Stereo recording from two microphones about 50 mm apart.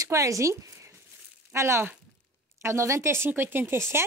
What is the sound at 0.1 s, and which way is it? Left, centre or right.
Speech, right.